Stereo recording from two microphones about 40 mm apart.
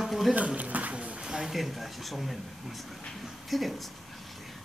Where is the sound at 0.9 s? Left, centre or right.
Right.